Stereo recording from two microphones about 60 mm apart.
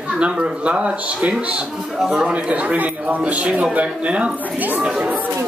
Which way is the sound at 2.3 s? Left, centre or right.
Right.